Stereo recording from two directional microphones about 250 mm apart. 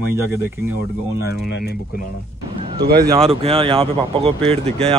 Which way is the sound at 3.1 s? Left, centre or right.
Right.